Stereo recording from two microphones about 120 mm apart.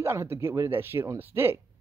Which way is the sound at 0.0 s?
20° right (ahead or behind).